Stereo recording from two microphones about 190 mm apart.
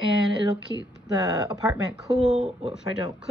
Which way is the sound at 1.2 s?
20° right (ahead or behind).